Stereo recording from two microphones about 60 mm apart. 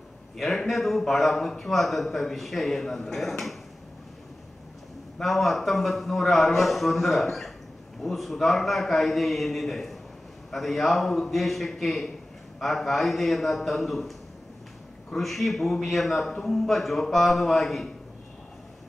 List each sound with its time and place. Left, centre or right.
0.4 s a man's voice: centre
5.2 s a man's voice: centre